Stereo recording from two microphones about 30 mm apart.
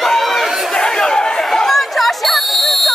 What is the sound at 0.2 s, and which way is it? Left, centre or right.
Chatter, centre.